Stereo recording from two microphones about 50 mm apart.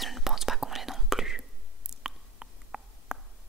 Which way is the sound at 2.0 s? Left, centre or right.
Centre.